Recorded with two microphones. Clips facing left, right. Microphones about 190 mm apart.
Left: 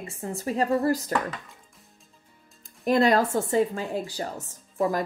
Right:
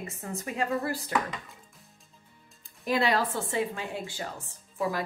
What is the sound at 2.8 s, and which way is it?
A woman's voice, 45° left (ahead or behind).